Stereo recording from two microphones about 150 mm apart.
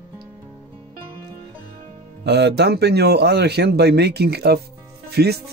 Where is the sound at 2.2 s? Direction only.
90° right.